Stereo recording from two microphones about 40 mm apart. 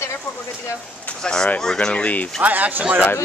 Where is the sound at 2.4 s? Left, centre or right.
Right.